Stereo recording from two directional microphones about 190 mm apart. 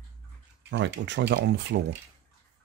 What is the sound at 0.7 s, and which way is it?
Speech, 70° right (ahead or behind).